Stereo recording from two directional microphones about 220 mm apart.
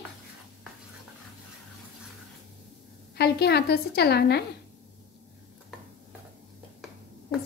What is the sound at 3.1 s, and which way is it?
A woman's voice, 45° left (ahead or behind).